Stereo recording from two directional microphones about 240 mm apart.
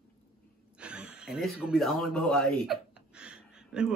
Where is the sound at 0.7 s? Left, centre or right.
Centre.